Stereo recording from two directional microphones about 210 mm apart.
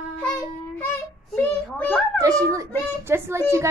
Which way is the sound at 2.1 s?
15° right (ahead or behind).